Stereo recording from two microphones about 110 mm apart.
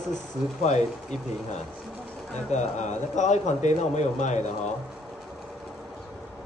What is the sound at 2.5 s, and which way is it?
Speech, 90° left.